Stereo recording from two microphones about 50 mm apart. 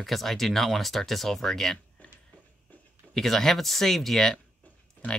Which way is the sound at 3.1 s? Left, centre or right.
Centre.